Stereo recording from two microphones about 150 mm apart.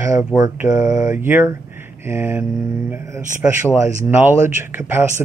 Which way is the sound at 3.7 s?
20° right (ahead or behind).